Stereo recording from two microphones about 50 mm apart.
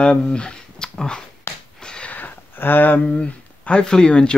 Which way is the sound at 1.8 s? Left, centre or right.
Centre.